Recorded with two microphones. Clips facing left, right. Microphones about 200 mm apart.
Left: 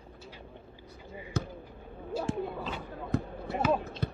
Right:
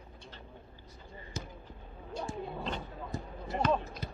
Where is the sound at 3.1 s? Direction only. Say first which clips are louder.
Left 10 dB; 60° left (ahead or behind).